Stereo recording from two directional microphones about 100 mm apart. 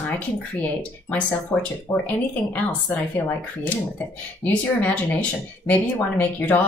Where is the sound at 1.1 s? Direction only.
15° left (ahead or behind).